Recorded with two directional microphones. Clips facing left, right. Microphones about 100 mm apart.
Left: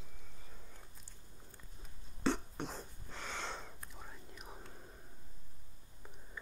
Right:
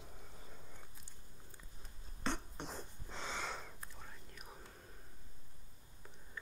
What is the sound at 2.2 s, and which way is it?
Beatboxing, centre (ahead or behind).